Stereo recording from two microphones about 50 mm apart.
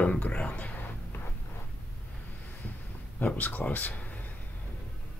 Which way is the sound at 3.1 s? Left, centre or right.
Left.